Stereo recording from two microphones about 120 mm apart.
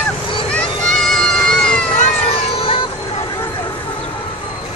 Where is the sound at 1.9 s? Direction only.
80° left.